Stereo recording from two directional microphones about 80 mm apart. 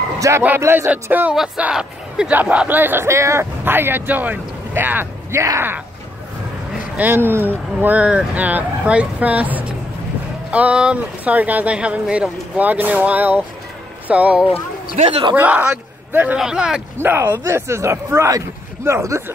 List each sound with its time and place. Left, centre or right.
0.2 s speech: right
1.7 s speech: centre
5.3 s speech: right
7.0 s a man's voice: right
16.3 s speech: centre
17.0 s speech: right